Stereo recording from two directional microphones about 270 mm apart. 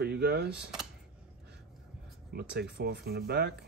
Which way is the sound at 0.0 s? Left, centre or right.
Right.